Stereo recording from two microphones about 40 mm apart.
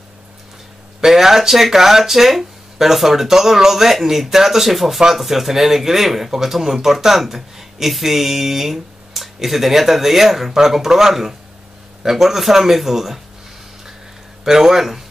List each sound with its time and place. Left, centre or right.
1.0 s speech: centre
14.4 s speech: centre